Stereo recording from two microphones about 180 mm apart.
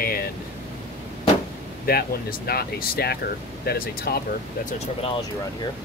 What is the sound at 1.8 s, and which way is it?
Speech, 60° left (ahead or behind).